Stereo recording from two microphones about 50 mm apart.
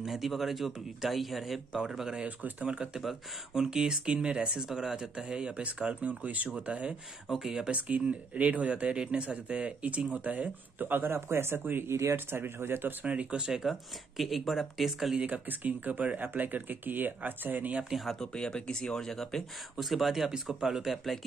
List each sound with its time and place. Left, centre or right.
0.0 s speech: centre
2.2 s speech: right
3.5 s speech: centre
7.2 s speech: centre
8.4 s speech: right
11.0 s speech: right
11.9 s speech: right
12.3 s speech: right
13.0 s speech: right
13.4 s speech: centre
15.1 s speech: right
18.2 s speech: centre